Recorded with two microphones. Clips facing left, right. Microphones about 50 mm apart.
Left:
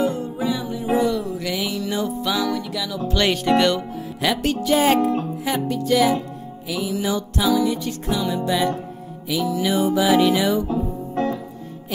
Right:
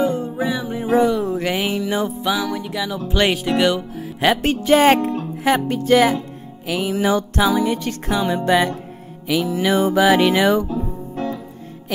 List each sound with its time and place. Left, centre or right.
0.0 s music: right
0.9 s a sound: right
1.8 s music: right
3.4 s speech: centre
4.2 s music: right
4.7 s music: right
10.7 s music: left